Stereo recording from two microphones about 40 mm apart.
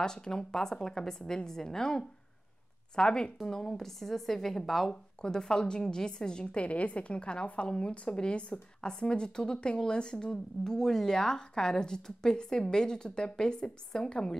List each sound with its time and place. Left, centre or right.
0.0 s a woman's voice: centre
3.3 s a woman's voice: centre
5.2 s a woman's voice: centre